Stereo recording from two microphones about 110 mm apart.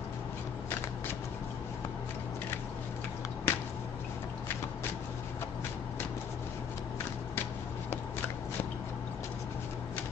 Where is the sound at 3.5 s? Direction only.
20° left (ahead or behind).